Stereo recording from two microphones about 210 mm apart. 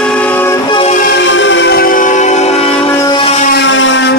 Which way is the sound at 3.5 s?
60° left (ahead or behind).